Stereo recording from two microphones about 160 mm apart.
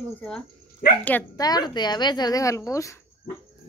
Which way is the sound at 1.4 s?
25° left (ahead or behind).